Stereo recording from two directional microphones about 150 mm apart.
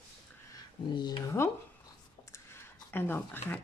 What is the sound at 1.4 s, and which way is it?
Speech, 15° left (ahead or behind).